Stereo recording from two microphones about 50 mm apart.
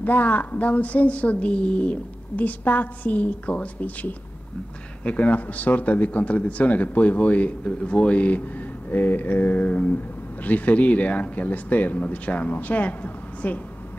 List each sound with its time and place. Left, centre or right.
0.0 s speech: left